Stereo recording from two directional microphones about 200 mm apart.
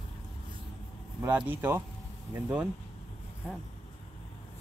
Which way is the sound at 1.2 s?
10° right (ahead or behind).